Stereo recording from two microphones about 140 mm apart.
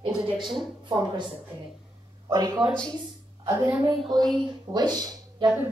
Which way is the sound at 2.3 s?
30° right (ahead or behind).